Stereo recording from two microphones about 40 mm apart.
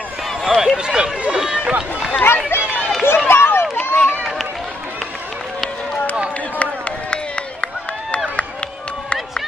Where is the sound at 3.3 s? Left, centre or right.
Left.